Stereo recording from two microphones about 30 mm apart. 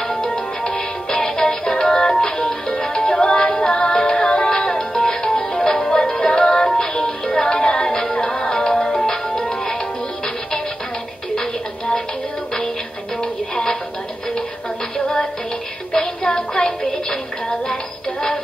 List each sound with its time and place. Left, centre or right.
0.1 s music: left
15.9 s music: left